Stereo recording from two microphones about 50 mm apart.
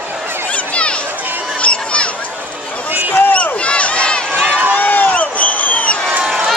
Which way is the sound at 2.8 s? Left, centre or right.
Right.